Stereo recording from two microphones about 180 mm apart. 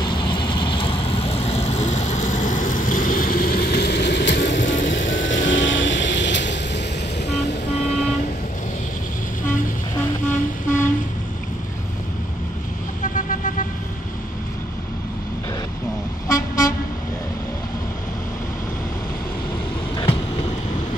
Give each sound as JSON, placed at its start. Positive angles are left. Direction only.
{"t": 0.0, "sound": "vehicle", "side_deg": 25}
{"t": 9.5, "sound": "vehicle", "side_deg": 15}
{"t": 13.0, "sound": "vehicle", "side_deg": 50}
{"t": 16.3, "sound": "vehicle", "side_deg": 20}